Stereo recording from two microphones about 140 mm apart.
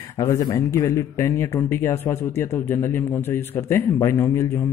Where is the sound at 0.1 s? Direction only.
20° left (ahead or behind).